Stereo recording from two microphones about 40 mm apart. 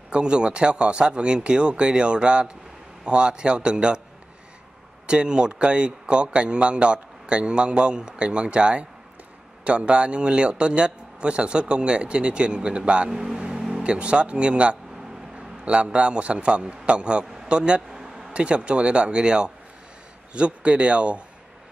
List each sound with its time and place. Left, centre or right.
0.1 s speech: right
5.0 s speech: right
13.1 s speech: centre
13.7 s a man's voice: right
18.0 s a sound: centre
18.3 s speech: right